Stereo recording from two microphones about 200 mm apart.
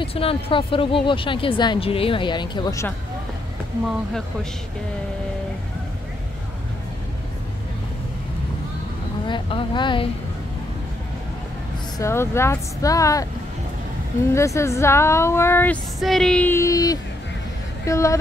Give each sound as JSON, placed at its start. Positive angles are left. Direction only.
{"t": 0.0, "sound": "a woman's voice", "side_deg": 30}
{"t": 9.3, "sound": "a woman's voice", "side_deg": 25}
{"t": 12.0, "sound": "speech", "side_deg": 15}
{"t": 14.3, "sound": "speech", "side_deg": 15}